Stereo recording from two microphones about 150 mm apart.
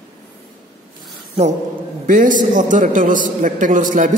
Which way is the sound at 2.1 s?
60° right (ahead or behind).